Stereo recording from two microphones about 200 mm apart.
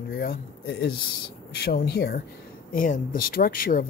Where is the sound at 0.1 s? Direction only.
55° left (ahead or behind).